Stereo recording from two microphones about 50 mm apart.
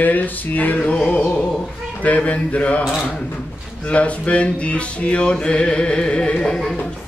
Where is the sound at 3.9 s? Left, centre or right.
Left.